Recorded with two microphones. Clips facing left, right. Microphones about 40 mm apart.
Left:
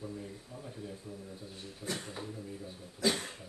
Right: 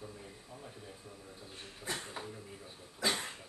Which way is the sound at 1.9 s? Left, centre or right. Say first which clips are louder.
Left 1 dB; centre.